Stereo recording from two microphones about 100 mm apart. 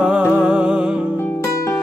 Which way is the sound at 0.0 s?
10° right (ahead or behind).